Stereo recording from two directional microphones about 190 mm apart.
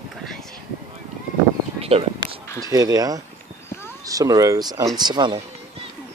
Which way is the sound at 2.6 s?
20° right (ahead or behind).